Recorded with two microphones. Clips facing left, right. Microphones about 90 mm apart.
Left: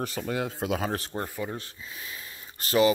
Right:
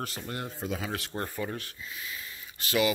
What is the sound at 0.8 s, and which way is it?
Speech, 35° left (ahead or behind).